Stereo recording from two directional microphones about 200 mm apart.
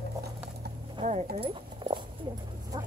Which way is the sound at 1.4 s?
25° right (ahead or behind).